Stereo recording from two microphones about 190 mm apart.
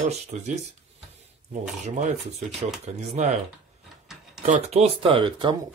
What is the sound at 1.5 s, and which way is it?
Speech, 40° right (ahead or behind).